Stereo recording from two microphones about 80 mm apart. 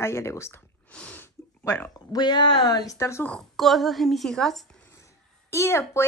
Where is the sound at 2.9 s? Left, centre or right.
Left.